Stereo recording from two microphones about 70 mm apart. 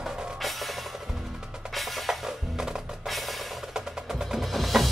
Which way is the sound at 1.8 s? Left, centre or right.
Centre.